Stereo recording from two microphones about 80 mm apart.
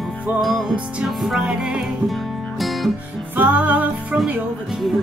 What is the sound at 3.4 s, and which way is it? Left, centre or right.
Music, right.